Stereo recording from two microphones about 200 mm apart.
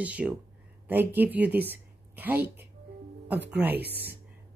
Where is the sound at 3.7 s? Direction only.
55° right (ahead or behind).